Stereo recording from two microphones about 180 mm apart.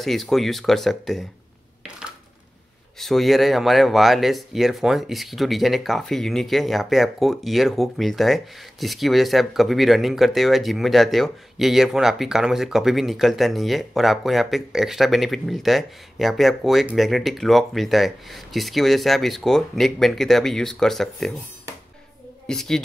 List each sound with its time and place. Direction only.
0.0 s speech: centre (ahead or behind)
3.0 s speech: centre (ahead or behind)
22.5 s speech: centre (ahead or behind)